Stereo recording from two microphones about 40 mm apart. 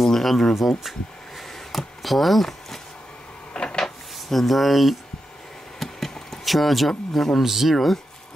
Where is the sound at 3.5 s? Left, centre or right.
Left.